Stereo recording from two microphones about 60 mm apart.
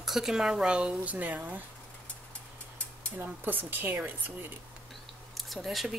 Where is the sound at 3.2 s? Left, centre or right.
Right.